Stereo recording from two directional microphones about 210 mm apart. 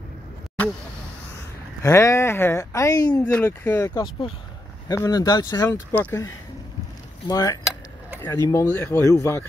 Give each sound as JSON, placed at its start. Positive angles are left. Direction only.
{"t": 1.8, "sound": "speech", "side_deg": 15}